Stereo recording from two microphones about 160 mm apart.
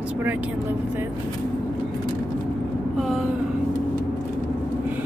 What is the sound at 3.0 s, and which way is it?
Vehicle, centre (ahead or behind).